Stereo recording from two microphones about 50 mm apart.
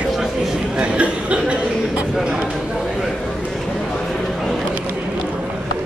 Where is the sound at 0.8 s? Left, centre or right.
Right.